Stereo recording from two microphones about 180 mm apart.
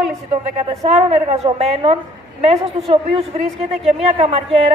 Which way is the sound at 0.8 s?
35° right (ahead or behind).